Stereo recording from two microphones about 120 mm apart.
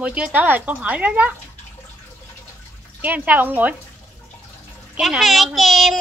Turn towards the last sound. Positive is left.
turn(degrees=0)  # may be behind; listen again after turning